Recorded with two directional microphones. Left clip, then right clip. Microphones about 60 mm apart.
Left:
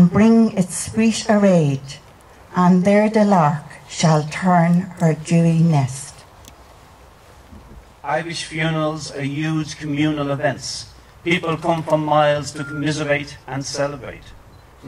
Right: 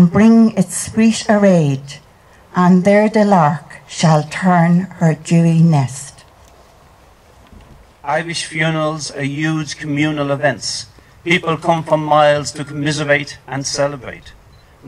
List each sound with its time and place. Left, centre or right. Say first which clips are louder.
0.0 s a woman's voice: right 3 dB; centre
8.1 s speech: right 4 dB; right